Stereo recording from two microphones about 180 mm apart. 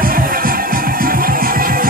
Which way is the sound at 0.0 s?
50° right (ahead or behind).